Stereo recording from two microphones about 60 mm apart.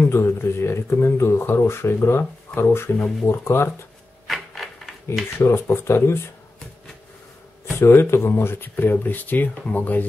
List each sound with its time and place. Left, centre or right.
0.1 s speech: left
4.3 s a sound: centre
5.4 s speech: left
7.8 s speech: left